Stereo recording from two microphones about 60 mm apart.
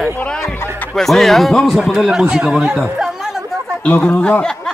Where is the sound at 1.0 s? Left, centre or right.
Centre.